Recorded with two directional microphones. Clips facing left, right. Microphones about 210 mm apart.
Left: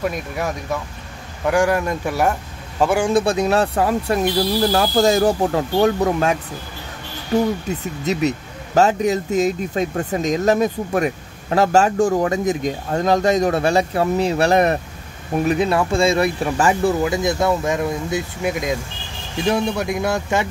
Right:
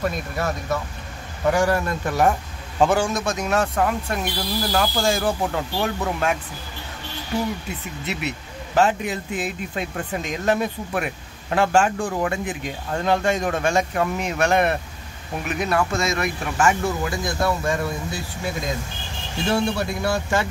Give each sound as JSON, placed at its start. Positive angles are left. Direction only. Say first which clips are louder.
{"t": 0.0, "sound": "speech", "louder": "left 2 dB", "side_deg": 10}
{"t": 1.5, "sound": "speech", "louder": "left 3 dB", "side_deg": 10}
{"t": 3.1, "sound": "speech", "louder": "left 7 dB", "side_deg": 30}
{"t": 8.0, "sound": "speech", "louder": "left 10 dB", "side_deg": 40}
{"t": 17.0, "sound": "speech", "louder": "left 5 dB", "side_deg": 20}